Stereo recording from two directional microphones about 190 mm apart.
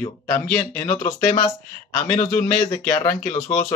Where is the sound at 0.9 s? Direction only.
30° left (ahead or behind).